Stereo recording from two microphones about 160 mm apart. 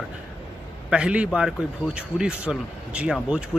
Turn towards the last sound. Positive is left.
turn(degrees=-5)  # may be behind; listen again after turning